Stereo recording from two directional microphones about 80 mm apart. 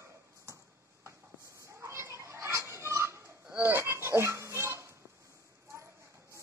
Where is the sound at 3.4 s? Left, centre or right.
Right.